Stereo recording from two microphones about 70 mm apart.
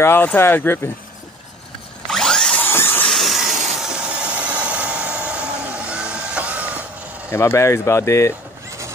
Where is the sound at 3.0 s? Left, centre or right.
Centre.